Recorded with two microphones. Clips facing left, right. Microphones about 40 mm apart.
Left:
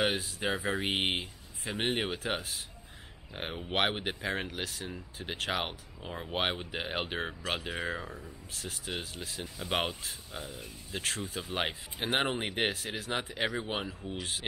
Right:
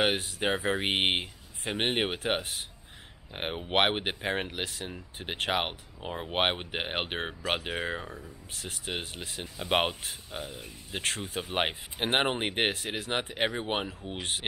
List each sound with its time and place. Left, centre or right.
0.0 s speech: right
0.6 s speech: right
0.8 s speech: right
3.3 s speech: right
6.0 s speech: centre
6.3 s speech: right
8.0 s speech: centre
8.5 s speech: right
10.3 s speech: right